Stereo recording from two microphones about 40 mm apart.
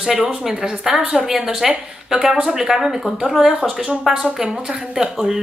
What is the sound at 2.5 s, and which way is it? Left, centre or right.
Speech, centre.